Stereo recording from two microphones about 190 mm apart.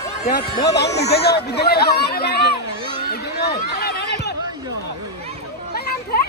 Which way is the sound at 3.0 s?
55° left (ahead or behind).